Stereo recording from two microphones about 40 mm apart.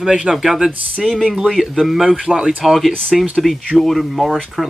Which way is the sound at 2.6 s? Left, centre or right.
Centre.